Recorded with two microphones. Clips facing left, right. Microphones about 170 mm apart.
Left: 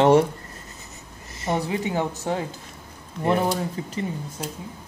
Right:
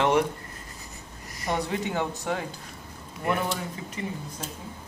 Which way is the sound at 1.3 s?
25° left (ahead or behind).